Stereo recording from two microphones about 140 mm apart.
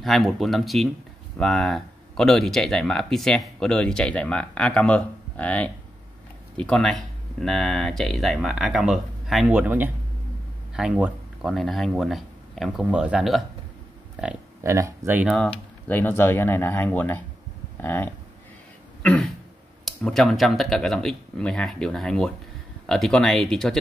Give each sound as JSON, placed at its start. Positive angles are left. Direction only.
{"t": 0.0, "sound": "speech", "side_deg": 0}
{"t": 9.5, "sound": "speech", "side_deg": -15}
{"t": 14.6, "sound": "speech", "side_deg": -20}
{"t": 15.3, "sound": "speech", "side_deg": 10}
{"t": 19.0, "sound": "speech", "side_deg": 5}